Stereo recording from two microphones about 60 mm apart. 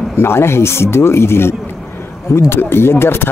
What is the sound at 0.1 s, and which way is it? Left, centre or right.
Speech, left.